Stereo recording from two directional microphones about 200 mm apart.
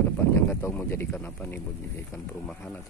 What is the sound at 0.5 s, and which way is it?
Speech, 10° left (ahead or behind).